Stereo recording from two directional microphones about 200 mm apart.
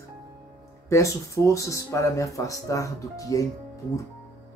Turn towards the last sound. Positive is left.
turn(degrees=15)  # may be behind; listen again after turning